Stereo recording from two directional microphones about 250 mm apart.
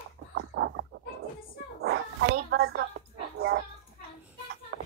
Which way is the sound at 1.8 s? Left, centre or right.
Right.